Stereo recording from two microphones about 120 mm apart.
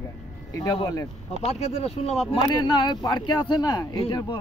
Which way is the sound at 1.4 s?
60° left (ahead or behind).